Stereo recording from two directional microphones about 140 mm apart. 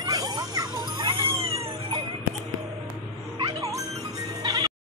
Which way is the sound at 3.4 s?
25° right (ahead or behind).